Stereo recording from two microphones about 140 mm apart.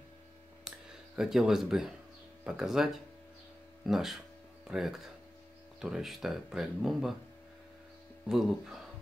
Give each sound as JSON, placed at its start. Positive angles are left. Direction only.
{"t": 0.7, "sound": "a sound", "side_deg": -5}
{"t": 2.4, "sound": "speech", "side_deg": -5}
{"t": 8.3, "sound": "speech", "side_deg": -5}